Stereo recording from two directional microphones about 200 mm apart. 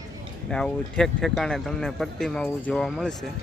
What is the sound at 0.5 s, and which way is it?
A man's voice, 5° left (ahead or behind).